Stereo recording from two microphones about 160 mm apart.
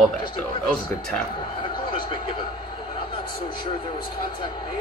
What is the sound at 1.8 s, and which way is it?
Speech, 30° left (ahead or behind).